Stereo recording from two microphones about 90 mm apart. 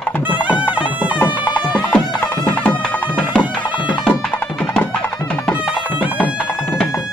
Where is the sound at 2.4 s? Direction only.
15° left (ahead or behind).